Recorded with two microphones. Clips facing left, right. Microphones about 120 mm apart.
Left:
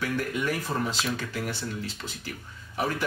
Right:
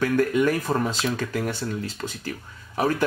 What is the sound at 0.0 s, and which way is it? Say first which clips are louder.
Speech: right 8 dB; 45° right (ahead or behind).